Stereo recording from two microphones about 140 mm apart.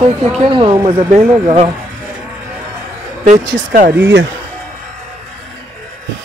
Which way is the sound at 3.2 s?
65° right (ahead or behind).